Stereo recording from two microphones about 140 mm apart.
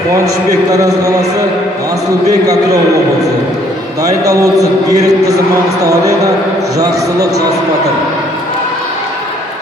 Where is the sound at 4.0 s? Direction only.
25° right (ahead or behind).